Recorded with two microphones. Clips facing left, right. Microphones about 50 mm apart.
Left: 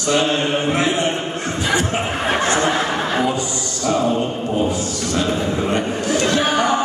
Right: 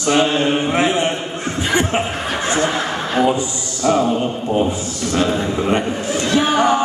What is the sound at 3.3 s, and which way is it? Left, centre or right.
Speech, centre.